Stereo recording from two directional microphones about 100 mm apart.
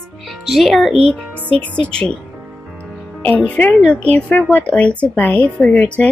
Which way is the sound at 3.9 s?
15° left (ahead or behind).